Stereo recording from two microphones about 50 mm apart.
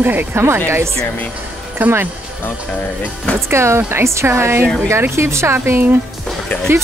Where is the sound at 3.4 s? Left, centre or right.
Right.